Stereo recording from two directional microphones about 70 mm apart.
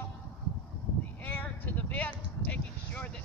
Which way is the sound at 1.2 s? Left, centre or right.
Left.